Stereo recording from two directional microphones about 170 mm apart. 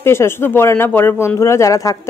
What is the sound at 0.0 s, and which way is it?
A woman's voice, 15° left (ahead or behind).